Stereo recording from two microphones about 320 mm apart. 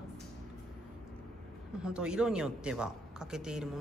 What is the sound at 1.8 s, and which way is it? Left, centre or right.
A woman's voice, centre.